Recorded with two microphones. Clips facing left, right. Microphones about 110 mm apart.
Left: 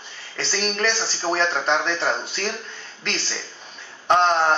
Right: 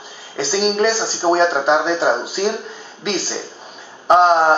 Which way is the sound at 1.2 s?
20° right (ahead or behind).